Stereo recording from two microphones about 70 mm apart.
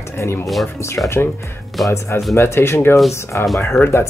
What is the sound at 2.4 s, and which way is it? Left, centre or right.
Speech, left.